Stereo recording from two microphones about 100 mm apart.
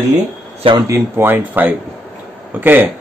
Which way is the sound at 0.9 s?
25° right (ahead or behind).